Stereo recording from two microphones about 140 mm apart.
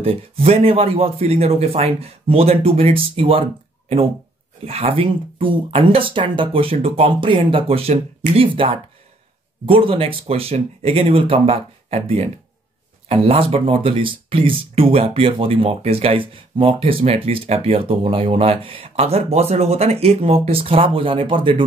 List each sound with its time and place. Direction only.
0.0 s speech: 45° right (ahead or behind)
4.6 s speech: 45° right (ahead or behind)